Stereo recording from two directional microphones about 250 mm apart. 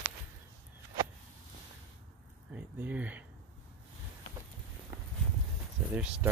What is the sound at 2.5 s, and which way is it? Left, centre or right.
Speech, centre.